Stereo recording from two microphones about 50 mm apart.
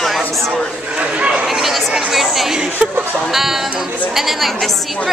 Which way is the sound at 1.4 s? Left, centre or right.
Centre.